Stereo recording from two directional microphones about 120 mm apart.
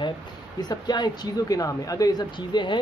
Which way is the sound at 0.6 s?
35° left (ahead or behind).